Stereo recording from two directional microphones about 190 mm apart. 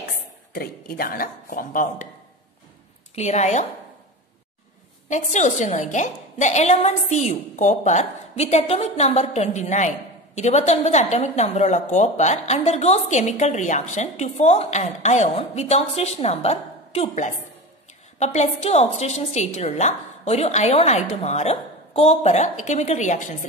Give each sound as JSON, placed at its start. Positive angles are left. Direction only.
{"t": 0.5, "sound": "speech", "side_deg": 50}
{"t": 3.2, "sound": "a woman's voice", "side_deg": 35}
{"t": 5.1, "sound": "a woman's voice", "side_deg": 40}